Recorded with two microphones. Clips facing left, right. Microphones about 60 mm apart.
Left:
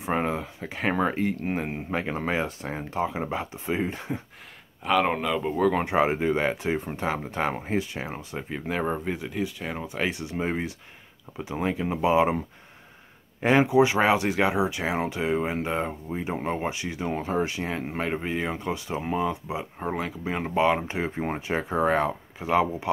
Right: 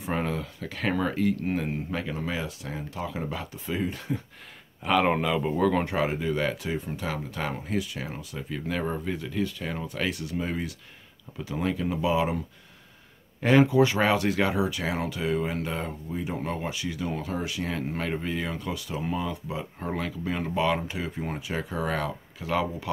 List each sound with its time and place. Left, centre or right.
0.0 s speech: left
4.8 s speech: centre
5.9 s speech: left
13.4 s speech: left